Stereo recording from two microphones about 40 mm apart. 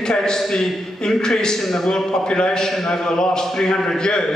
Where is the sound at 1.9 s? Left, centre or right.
Centre.